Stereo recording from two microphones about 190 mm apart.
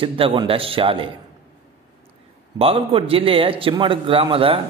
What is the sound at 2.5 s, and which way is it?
A man's voice, 30° right (ahead or behind).